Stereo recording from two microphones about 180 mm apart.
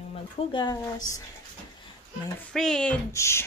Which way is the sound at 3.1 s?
15° left (ahead or behind).